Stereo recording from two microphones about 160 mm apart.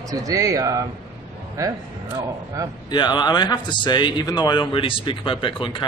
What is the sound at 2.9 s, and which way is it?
Speech, 25° left (ahead or behind).